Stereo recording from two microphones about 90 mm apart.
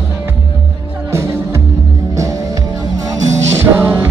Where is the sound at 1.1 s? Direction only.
30° right (ahead or behind).